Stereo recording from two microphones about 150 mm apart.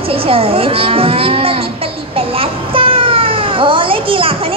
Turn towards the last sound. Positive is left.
turn(degrees=-35)  # may be behind; listen again after turning